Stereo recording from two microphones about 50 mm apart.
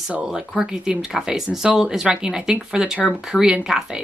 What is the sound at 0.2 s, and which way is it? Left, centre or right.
A woman's voice, centre.